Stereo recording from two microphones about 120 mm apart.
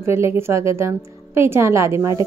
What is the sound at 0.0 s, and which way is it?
A woman's voice, 20° right (ahead or behind).